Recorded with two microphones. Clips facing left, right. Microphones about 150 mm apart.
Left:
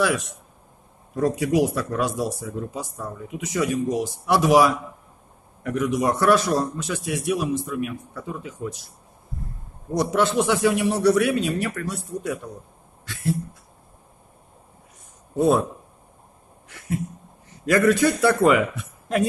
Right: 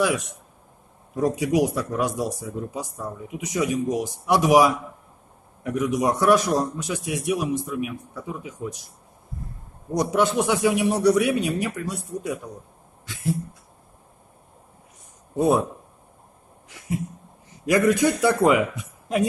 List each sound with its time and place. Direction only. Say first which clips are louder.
0.0 s speech: even; 15° right (ahead or behind)
9.9 s speech: even; 15° right (ahead or behind)
13.0 s a sound: left 1 dB; 15° right (ahead or behind)
15.3 s speech: left 1 dB; 15° right (ahead or behind)
16.6 s a sound: left 1 dB; 15° right (ahead or behind)
17.5 s a man's voice: left 1 dB; 15° right (ahead or behind)